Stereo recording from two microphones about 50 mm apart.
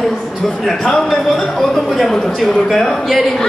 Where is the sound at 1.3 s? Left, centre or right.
Centre.